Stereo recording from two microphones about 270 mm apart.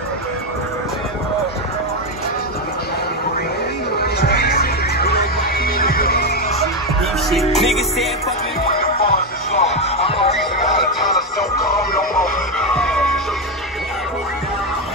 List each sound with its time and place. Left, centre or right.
4.0 s music: left
7.5 s music: centre
8.9 s music: left
12.2 s music: centre